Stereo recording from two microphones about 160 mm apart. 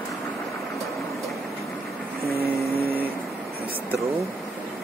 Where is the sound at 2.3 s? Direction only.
75° right (ahead or behind).